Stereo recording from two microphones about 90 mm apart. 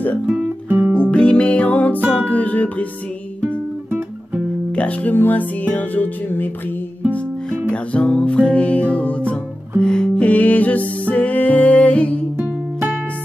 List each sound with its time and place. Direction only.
0.7 s music: 20° right (ahead or behind)
1.1 s music: 10° left (ahead or behind)
4.7 s speech: 15° left (ahead or behind)
7.7 s music: 15° left (ahead or behind)